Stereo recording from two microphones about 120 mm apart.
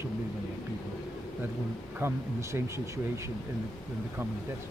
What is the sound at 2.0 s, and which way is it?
Speech, 25° right (ahead or behind).